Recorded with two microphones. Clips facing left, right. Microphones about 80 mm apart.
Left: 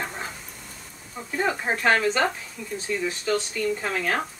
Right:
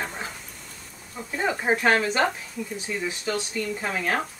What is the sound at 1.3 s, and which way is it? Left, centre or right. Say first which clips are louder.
Speech: right 1 dB; centre.